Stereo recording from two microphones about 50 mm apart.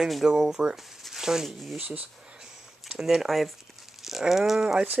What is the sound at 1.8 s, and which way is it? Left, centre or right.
Speech, right.